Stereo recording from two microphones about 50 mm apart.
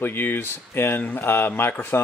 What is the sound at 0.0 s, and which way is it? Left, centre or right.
Speech, left.